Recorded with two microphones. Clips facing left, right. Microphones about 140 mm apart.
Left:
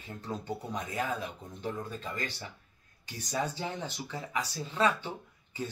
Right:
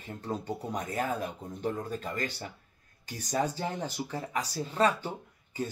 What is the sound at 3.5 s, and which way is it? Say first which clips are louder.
Speech: right 3 dB; 40° right (ahead or behind).